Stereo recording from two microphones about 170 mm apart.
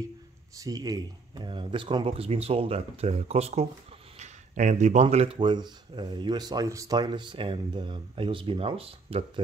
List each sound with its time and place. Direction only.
0.6 s speech: 20° right (ahead or behind); by 3.6 s 40° right (ahead or behind)
4.2 s a sound: 45° right (ahead or behind)
5.0 s speech: 35° right (ahead or behind)